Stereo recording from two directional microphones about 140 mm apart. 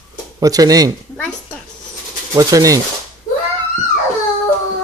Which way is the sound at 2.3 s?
25° right (ahead or behind).